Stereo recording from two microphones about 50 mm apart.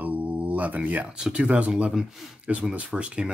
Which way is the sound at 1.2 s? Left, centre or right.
Right.